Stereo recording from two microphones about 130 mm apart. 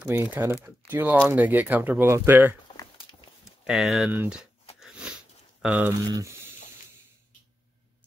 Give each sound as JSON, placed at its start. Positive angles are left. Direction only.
{"t": 0.1, "sound": "speech", "side_deg": -20}
{"t": 3.4, "sound": "speech", "side_deg": 0}
{"t": 4.7, "sound": "a sound", "side_deg": -5}
{"t": 5.6, "sound": "speech", "side_deg": -5}
{"t": 5.9, "sound": "speech", "side_deg": -20}